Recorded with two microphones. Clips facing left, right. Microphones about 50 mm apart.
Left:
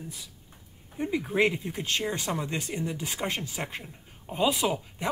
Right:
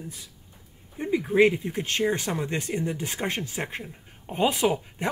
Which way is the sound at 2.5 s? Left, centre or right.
Right.